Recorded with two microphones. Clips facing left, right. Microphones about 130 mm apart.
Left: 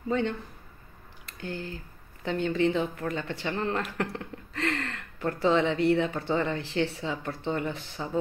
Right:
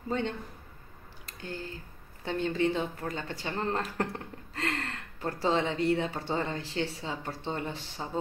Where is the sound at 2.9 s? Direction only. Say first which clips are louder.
Left 4 dB; 35° right (ahead or behind).